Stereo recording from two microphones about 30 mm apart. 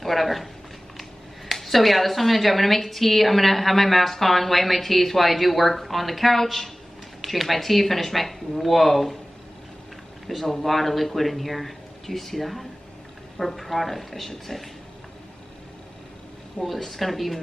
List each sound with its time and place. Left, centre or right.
0.0 s a sound: centre
1.5 s a woman's voice: centre
10.2 s a woman's voice: centre
16.5 s a woman's voice: centre